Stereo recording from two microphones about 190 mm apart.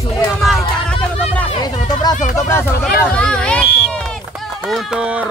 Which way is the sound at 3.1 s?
5° left (ahead or behind).